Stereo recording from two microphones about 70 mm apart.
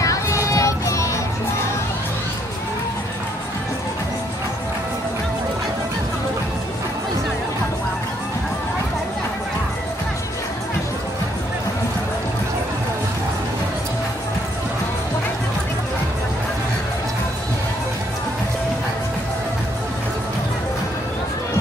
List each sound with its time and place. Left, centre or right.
0.0 s music: left